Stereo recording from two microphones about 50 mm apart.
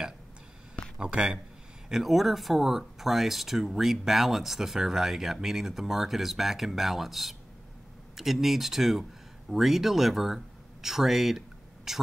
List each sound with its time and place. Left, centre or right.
0.9 s speech: centre
1.9 s speech: centre